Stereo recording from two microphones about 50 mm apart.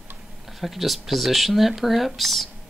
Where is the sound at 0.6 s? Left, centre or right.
Centre.